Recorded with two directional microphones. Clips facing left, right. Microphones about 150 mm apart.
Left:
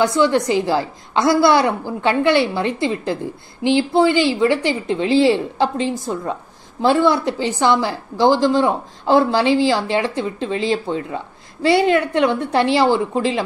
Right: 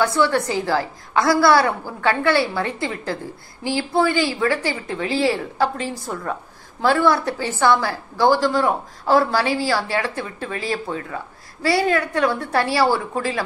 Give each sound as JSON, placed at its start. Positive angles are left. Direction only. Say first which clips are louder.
{"t": 0.0, "sound": "a woman's voice", "louder": "left 3 dB", "side_deg": 20}